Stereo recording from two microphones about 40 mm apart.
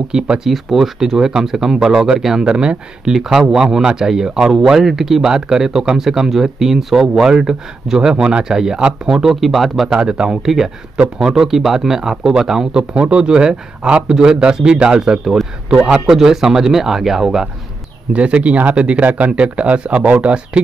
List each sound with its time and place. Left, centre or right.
0.1 s speech: centre
0.5 s speech: centre
2.4 s speech: right
3.1 s speech: centre
9.9 s speech: right
10.4 s speech: centre
12.9 s speech: right
18.1 s speech: right